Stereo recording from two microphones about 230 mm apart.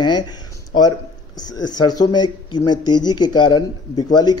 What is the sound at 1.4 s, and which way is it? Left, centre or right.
A man's voice, centre.